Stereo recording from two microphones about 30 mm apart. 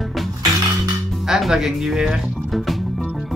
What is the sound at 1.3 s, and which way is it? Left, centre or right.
Speech, centre.